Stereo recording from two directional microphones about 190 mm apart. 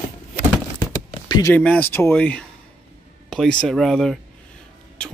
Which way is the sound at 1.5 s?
10° left (ahead or behind).